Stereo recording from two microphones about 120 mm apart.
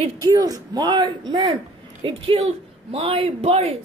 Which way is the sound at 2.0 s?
50° right (ahead or behind).